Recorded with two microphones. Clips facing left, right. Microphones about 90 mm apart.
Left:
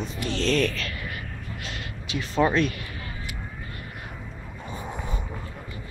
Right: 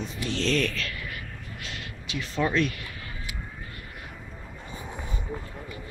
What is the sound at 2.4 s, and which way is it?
Speech, 35° left (ahead or behind).